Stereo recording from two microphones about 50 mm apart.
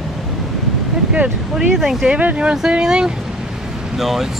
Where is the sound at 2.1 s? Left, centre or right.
Right.